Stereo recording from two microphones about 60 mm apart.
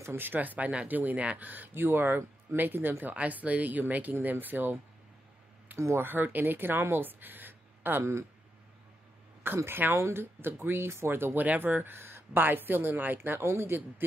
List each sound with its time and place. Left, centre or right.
0.0 s speech: right
5.8 s speech: right
6.0 s speech: right
9.7 s speech: right
9.9 s speech: right
11.3 s speech: right